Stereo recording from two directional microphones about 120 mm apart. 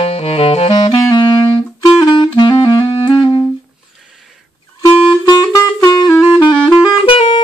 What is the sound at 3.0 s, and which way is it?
Music, 45° left (ahead or behind).